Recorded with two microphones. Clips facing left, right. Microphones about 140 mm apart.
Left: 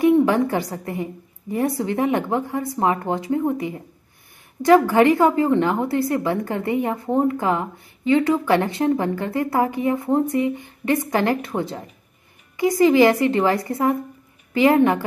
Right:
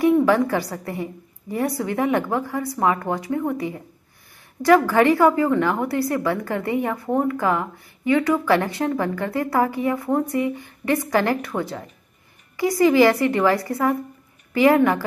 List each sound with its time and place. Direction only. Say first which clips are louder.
0.0 s a woman's voice: left 1 dB; 20° left (ahead or behind)